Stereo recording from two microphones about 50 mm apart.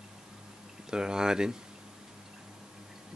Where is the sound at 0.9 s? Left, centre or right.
Centre.